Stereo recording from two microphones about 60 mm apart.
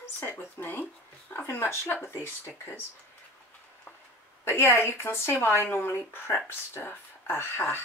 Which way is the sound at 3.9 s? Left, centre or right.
Left.